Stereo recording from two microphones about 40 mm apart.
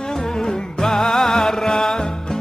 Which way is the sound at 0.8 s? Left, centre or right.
Centre.